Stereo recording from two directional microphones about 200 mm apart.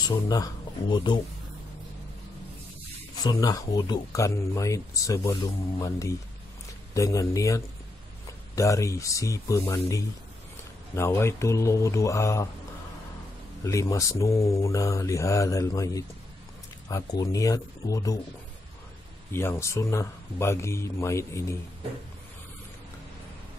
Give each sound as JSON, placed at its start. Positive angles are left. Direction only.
{"t": 0.0, "sound": "speech", "side_deg": 20}
{"t": 3.2, "sound": "speech", "side_deg": 20}
{"t": 6.9, "sound": "speech", "side_deg": 15}
{"t": 13.7, "sound": "speech", "side_deg": 15}
{"t": 19.3, "sound": "speech", "side_deg": 15}